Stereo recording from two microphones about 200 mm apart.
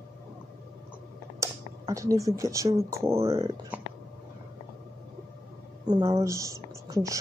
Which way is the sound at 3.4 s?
25° right (ahead or behind).